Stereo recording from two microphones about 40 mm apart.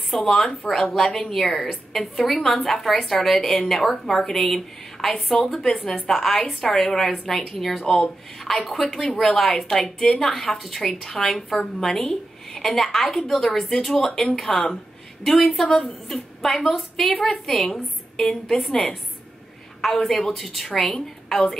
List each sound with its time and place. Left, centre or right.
0.2 s speech: left
0.7 s a woman's voice: centre
19.8 s a woman's voice: centre
20.7 s a woman's voice: centre